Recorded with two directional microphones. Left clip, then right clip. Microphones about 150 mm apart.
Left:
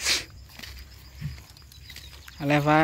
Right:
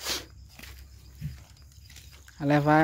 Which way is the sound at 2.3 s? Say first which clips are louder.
Left 1 dB; 25° right (ahead or behind).